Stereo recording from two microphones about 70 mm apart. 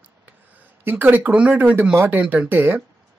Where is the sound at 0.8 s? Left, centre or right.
Right.